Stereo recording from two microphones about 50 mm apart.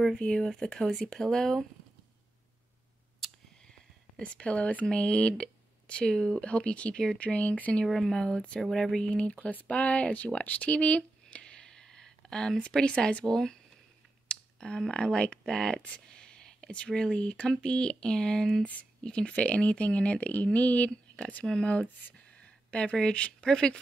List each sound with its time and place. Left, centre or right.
0.2 s speech: centre
3.2 s a sound: centre
4.2 s speech: left
7.8 s speech: centre
8.1 s speech: centre